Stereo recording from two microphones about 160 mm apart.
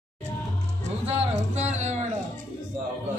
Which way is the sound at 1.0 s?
40° right (ahead or behind).